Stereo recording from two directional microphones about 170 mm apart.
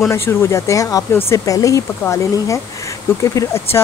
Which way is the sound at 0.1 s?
15° left (ahead or behind).